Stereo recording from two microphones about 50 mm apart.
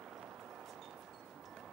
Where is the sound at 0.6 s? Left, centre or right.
Centre.